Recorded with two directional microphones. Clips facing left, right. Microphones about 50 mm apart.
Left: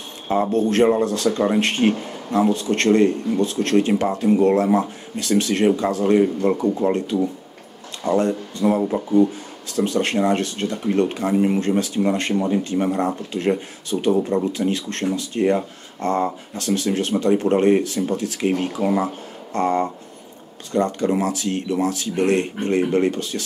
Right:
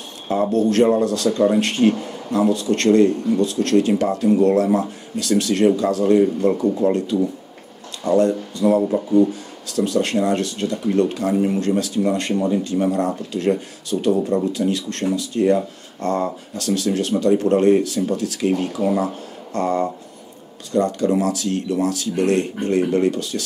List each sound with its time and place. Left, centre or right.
0.3 s a man's voice: left